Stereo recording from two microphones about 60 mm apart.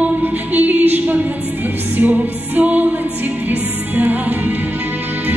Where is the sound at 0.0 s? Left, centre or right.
Right.